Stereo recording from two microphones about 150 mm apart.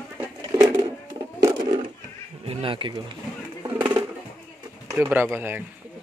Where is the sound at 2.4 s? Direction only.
40° right (ahead or behind).